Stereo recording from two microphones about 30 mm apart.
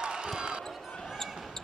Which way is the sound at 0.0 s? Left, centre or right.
Right.